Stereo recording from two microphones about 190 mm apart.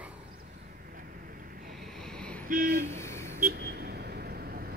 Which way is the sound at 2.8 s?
15° left (ahead or behind).